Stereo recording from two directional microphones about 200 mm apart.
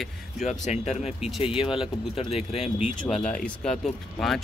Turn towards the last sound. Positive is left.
turn(degrees=0)  # may be behind; listen again after turning